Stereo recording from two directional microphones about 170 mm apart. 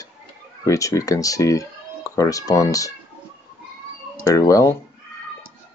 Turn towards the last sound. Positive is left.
turn(degrees=20)  # may be behind; listen again after turning